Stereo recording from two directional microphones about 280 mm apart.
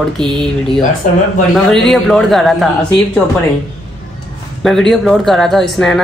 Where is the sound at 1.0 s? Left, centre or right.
Left.